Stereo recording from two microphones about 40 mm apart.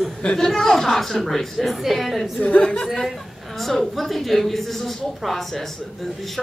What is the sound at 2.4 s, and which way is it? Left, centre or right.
Speech, left.